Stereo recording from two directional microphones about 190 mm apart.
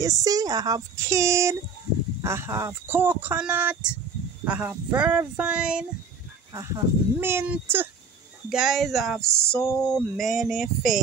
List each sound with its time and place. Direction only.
0.0 s speech: 20° right (ahead or behind)
6.5 s speech: 15° right (ahead or behind); by 11.0 s centre (ahead or behind)